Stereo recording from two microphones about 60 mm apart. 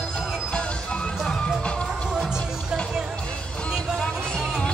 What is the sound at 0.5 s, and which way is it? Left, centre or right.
Music, centre.